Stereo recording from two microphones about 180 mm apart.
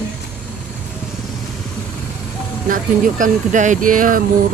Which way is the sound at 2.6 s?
45° right (ahead or behind).